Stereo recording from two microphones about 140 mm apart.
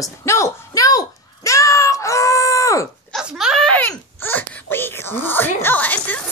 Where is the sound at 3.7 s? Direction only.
10° left (ahead or behind).